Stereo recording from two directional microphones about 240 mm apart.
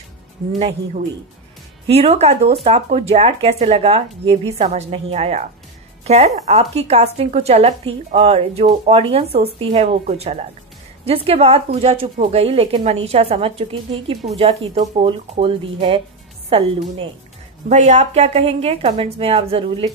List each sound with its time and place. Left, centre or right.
0.6 s a woman's voice: right